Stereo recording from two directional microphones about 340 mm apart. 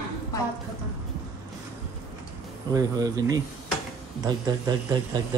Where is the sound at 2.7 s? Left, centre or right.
Centre.